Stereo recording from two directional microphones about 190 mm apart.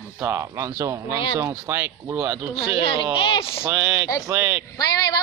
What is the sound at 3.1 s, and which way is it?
Speech, 25° left (ahead or behind).